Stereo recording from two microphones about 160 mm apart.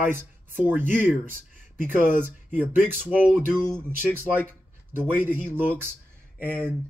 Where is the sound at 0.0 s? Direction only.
15° right (ahead or behind).